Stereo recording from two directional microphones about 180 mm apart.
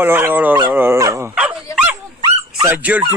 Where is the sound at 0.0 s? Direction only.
10° right (ahead or behind).